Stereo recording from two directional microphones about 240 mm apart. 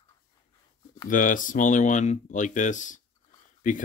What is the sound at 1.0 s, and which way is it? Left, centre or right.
Speech, left.